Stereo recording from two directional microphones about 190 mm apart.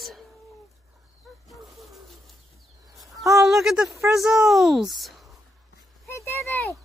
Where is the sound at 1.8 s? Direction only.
Centre (ahead or behind).